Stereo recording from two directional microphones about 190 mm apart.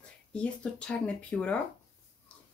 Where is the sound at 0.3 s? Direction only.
5° left (ahead or behind).